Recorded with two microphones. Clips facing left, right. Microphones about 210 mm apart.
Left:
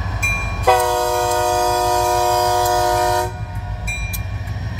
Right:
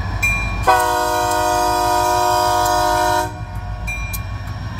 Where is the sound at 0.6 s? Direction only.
10° left (ahead or behind).